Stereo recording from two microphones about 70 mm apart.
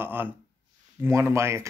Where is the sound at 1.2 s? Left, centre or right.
Right.